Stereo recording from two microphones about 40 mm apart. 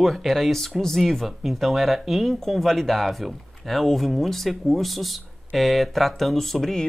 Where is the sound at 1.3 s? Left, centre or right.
Centre.